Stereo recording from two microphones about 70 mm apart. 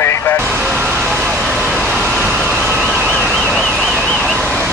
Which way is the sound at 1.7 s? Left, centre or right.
Centre.